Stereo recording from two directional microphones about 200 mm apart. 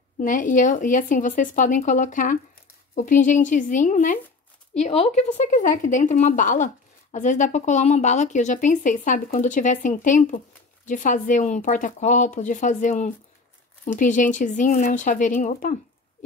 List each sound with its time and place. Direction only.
0.2 s speech: 40° left (ahead or behind)